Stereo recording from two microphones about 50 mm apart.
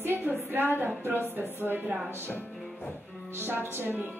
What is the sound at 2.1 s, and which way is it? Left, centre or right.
Music, left.